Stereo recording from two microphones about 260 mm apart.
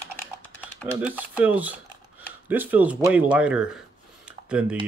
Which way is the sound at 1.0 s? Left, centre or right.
Centre.